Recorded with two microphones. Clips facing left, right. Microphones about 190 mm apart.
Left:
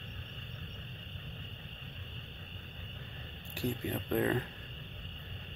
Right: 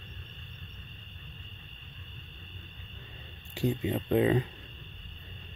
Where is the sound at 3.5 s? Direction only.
15° right (ahead or behind).